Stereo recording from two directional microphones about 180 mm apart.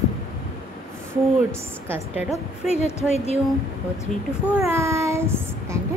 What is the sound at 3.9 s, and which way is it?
Speech, 15° left (ahead or behind).